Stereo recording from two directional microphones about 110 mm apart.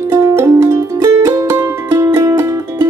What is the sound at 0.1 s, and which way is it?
Music, 25° right (ahead or behind).